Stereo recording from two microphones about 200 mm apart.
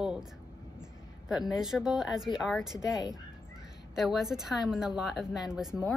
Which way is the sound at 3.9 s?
Centre (ahead or behind).